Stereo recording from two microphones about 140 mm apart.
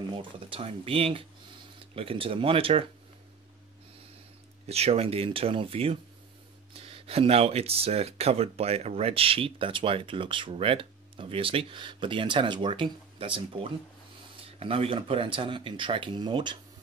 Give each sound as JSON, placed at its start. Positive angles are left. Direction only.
{"t": 0.1, "sound": "speech", "side_deg": -40}
{"t": 4.6, "sound": "speech", "side_deg": -45}